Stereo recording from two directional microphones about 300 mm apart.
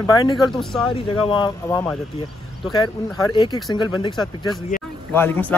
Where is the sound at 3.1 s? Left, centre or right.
Centre.